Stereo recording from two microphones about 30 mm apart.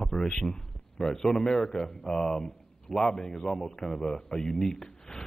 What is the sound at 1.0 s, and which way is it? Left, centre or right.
Speech, centre.